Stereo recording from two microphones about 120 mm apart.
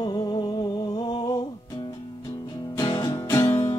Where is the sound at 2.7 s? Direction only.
35° left (ahead or behind).